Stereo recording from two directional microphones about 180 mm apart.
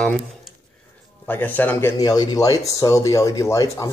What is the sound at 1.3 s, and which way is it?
Speech, 10° left (ahead or behind).